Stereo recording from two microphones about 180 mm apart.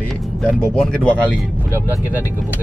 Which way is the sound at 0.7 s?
5° left (ahead or behind).